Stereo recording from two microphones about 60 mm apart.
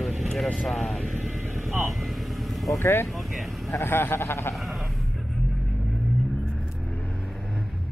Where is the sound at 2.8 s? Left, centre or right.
Left.